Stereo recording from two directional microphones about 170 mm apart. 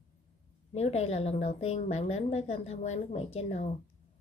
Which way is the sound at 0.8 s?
40° left (ahead or behind).